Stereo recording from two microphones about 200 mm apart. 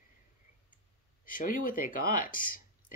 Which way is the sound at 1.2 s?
45° left (ahead or behind).